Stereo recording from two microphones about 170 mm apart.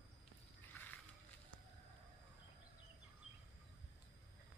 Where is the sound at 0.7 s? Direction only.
10° left (ahead or behind).